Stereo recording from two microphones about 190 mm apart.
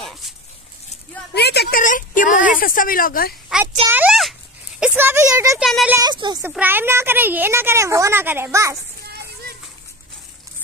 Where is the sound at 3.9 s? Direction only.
5° right (ahead or behind).